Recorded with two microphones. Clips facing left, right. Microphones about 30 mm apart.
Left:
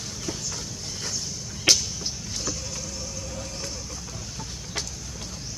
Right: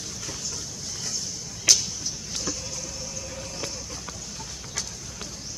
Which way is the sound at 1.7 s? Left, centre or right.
Left.